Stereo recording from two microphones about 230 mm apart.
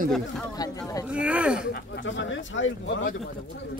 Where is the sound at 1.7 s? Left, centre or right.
Left.